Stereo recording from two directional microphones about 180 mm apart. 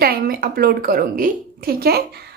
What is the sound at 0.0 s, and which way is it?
A woman's voice, 55° right (ahead or behind).